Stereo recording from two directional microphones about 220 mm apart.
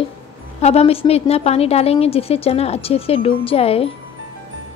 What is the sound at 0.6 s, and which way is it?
A woman's voice, 30° left (ahead or behind).